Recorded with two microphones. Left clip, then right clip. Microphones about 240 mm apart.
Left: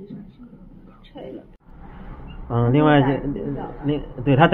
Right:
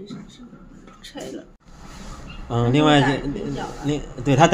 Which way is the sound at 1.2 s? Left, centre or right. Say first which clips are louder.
Right 2 dB; right.